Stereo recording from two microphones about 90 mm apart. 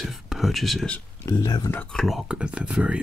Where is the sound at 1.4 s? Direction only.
50° left (ahead or behind).